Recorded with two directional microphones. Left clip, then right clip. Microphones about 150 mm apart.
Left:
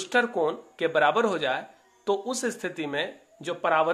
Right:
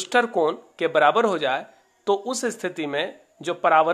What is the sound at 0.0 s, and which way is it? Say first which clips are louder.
Speech: right 4 dB; 40° right (ahead or behind).